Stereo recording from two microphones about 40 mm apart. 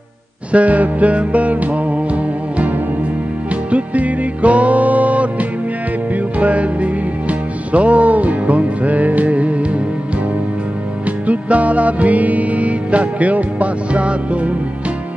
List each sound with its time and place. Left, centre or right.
0.5 s music: right
3.7 s music: right
11.2 s music: right